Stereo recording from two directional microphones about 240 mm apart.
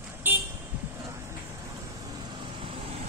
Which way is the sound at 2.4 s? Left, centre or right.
Right.